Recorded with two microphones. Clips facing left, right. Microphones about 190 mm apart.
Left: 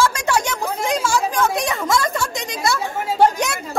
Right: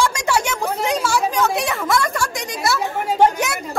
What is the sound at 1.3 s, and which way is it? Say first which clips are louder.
A woman's voice: even; 10° left (ahead or behind).